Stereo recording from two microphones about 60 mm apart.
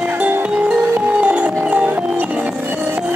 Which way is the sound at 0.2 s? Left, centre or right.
Right.